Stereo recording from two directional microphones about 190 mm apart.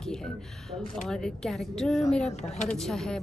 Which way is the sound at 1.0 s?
5° left (ahead or behind).